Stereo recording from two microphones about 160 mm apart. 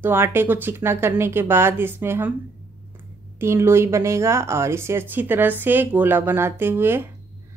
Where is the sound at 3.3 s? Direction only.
15° right (ahead or behind).